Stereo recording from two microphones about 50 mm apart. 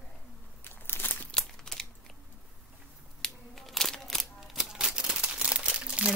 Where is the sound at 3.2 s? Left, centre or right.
Centre.